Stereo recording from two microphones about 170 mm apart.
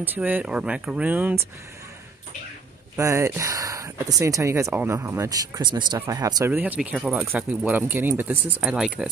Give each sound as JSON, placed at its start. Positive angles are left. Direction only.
{"t": 0.0, "sound": "speech", "side_deg": -10}
{"t": 3.0, "sound": "speech", "side_deg": -20}
{"t": 6.5, "sound": "speech", "side_deg": -10}